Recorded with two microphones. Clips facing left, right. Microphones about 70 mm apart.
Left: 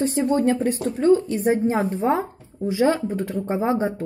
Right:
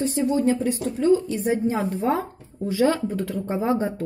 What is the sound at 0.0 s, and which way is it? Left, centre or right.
A woman's voice, left.